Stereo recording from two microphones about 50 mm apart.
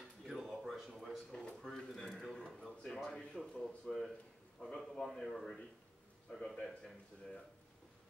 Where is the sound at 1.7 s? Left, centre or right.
Centre.